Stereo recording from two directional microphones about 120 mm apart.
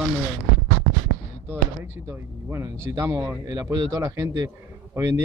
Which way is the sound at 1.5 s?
20° right (ahead or behind).